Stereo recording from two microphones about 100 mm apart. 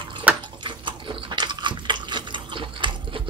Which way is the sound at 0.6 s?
55° right (ahead or behind).